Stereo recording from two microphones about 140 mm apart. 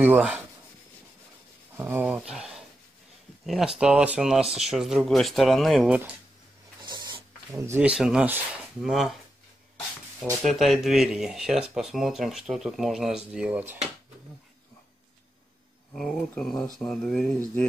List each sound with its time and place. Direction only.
0.0 s speech: 10° right (ahead or behind)
1.8 s speech: 15° right (ahead or behind)
6.8 s a sound: 30° right (ahead or behind)
7.6 s speech: 15° right (ahead or behind)
7.9 s speech: 5° right (ahead or behind)
10.3 s speech: centre (ahead or behind)
15.9 s speech: 5° left (ahead or behind)